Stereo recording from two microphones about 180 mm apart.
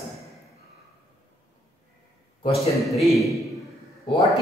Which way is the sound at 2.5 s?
Centre (ahead or behind).